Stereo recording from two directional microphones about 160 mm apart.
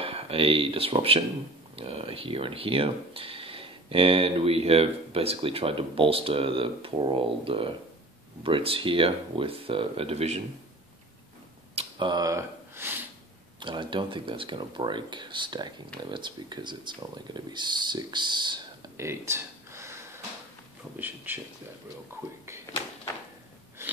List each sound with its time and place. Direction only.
0.0 s speech: 35° right (ahead or behind)
11.7 s sniff: 35° right (ahead or behind); by 13.0 s 15° right (ahead or behind)
13.6 s speech: 30° right (ahead or behind)
18.9 s a sound: 15° right (ahead or behind)
21.3 s speech: 10° right (ahead or behind)
23.8 s biting: 15° right (ahead or behind)